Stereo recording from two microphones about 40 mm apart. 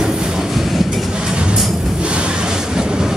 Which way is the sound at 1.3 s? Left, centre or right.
Right.